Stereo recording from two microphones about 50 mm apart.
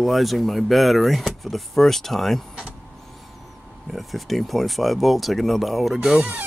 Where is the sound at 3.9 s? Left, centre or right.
Centre.